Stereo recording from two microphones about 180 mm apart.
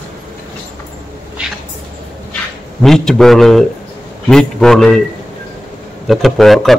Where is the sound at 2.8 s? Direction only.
Centre (ahead or behind).